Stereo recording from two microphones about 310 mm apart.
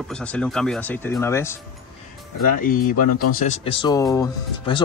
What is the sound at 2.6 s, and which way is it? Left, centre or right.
Speech, left.